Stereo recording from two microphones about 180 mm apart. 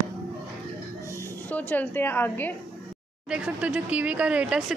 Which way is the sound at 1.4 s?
10° left (ahead or behind).